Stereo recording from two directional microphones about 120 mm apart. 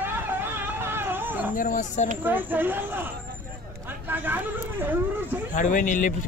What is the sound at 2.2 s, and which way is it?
Speech, 15° right (ahead or behind).